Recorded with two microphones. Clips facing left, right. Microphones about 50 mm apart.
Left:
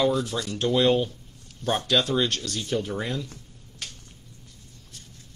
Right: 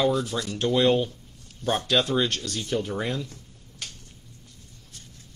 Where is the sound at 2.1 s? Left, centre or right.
Centre.